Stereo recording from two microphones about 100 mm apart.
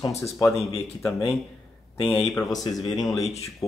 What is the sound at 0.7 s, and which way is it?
Speech, 30° left (ahead or behind).